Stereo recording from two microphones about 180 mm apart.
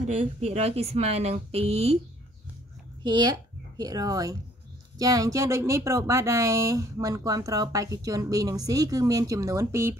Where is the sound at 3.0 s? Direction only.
25° right (ahead or behind).